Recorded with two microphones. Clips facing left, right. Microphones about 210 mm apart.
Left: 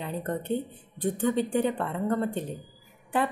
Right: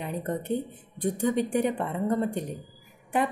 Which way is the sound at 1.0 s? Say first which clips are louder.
Even; 10° right (ahead or behind).